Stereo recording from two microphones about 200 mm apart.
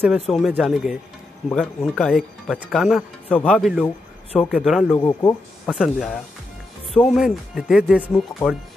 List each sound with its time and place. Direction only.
0.0 s speech: 5° right (ahead or behind)
5.0 s speech: 15° left (ahead or behind)
5.8 s speech: centre (ahead or behind)